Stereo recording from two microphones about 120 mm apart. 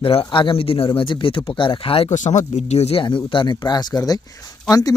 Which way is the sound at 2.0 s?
85° left.